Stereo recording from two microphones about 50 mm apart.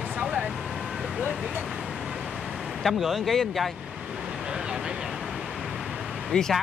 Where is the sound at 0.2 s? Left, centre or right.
Right.